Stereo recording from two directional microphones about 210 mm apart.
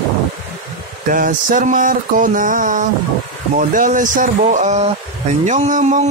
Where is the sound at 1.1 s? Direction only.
40° right (ahead or behind).